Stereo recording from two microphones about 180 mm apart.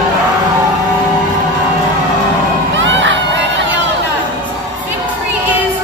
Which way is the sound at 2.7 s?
90° right.